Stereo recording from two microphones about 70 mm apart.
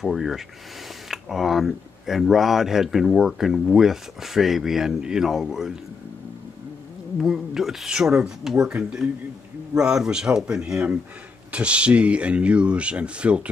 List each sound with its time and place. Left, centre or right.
0.0 s speech: centre
7.2 s speech: centre